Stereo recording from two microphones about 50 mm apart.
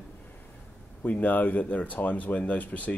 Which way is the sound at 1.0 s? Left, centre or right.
Left.